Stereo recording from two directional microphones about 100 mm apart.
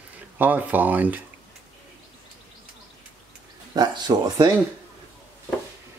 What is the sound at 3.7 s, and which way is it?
Speech, 45° right (ahead or behind).